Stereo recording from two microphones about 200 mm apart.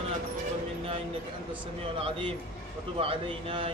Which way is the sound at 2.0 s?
25° right (ahead or behind).